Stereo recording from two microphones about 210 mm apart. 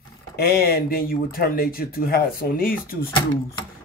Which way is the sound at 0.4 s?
45° left (ahead or behind).